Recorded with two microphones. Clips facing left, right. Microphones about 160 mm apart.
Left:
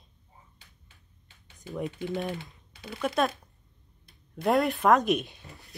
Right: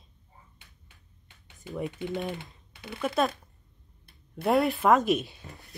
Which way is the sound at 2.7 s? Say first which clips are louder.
Even; 55° right (ahead or behind).